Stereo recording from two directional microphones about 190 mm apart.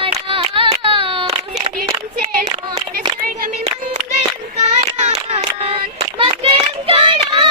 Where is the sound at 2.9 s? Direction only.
50° right (ahead or behind).